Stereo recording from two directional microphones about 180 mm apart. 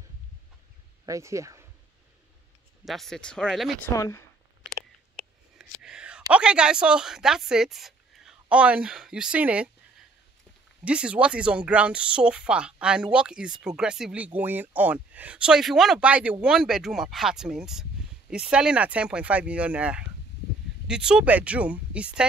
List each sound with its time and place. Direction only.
1.0 s speech: 15° right (ahead or behind)
2.8 s speech: centre (ahead or behind)
3.9 s speech: 20° left (ahead or behind)
5.6 s whispering: 5° right (ahead or behind)
6.3 s speech: 5° right (ahead or behind)
10.8 s speech: 5° right (ahead or behind)